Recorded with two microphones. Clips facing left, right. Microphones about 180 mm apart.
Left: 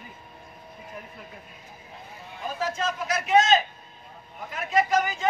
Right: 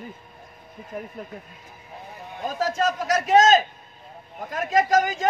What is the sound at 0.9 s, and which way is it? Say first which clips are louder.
Speech: right 9 dB; 50° right (ahead or behind).